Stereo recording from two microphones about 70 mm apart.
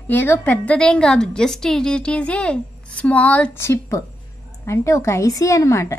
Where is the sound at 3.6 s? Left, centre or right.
Left.